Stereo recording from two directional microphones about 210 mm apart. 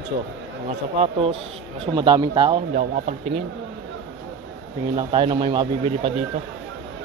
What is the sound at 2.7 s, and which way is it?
Speech, 40° right (ahead or behind).